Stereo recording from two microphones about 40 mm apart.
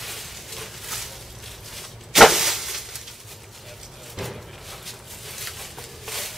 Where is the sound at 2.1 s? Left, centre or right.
Centre.